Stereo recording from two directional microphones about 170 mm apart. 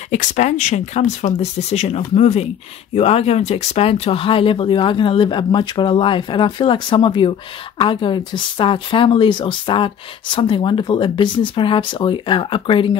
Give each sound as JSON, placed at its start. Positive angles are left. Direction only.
{"t": 0.1, "sound": "speech", "side_deg": 45}